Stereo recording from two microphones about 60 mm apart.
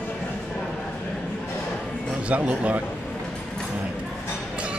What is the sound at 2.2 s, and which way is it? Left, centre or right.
Speech, right.